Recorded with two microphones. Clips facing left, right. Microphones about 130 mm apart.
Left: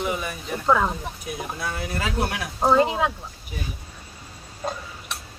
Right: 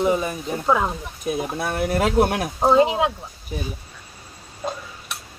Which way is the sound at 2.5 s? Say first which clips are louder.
Right 2 dB; 15° right (ahead or behind).